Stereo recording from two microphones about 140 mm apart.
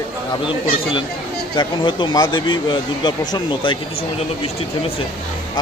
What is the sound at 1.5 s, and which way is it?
Speech, 35° left (ahead or behind).